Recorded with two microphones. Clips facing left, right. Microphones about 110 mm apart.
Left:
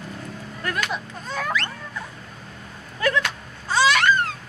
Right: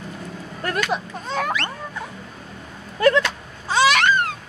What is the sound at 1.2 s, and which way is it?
Music, 20° right (ahead or behind).